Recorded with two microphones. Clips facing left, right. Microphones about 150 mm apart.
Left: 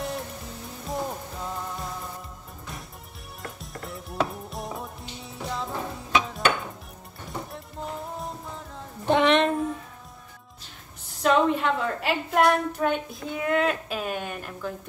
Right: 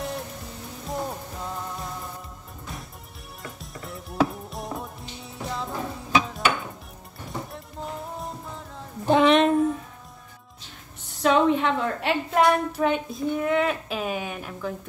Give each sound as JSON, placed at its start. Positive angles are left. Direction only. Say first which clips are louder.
{"t": 0.0, "sound": "music", "louder": "even", "side_deg": 0}
{"t": 3.4, "sound": "music", "louder": "left 1 dB", "side_deg": 0}
{"t": 11.1, "sound": "a woman's voice", "louder": "right 1 dB", "side_deg": 0}